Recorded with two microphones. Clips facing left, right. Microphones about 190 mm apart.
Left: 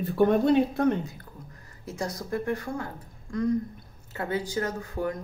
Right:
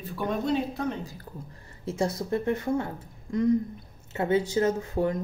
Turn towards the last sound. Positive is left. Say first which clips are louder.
# right 4 dB
turn(degrees=-25)  # may be behind; listen again after turning